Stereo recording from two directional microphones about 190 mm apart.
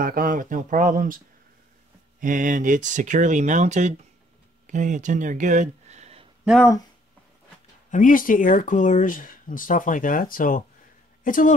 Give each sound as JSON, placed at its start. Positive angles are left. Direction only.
{"t": 0.0, "sound": "speech", "side_deg": -50}
{"t": 7.9, "sound": "speech", "side_deg": 45}